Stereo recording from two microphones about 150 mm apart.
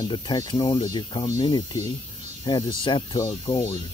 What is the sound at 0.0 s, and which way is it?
Speech, 30° left (ahead or behind).